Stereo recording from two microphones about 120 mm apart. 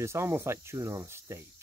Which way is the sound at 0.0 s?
20° right (ahead or behind).